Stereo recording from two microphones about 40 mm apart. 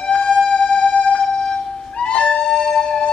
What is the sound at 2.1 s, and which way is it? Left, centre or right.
Cat, left.